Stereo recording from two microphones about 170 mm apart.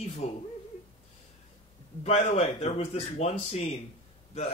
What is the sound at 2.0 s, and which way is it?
A man's voice, 40° left (ahead or behind).